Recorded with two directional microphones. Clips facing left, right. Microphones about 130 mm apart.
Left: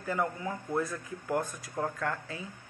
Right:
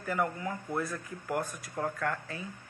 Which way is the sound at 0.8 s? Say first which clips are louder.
Left 2 dB; centre (ahead or behind).